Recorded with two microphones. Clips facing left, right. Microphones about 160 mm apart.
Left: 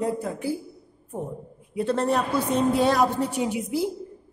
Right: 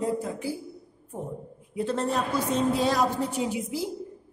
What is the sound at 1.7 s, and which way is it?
A woman's voice, 65° left (ahead or behind).